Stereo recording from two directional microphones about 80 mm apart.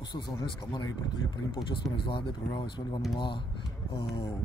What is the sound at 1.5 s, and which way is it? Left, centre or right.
Speech, left.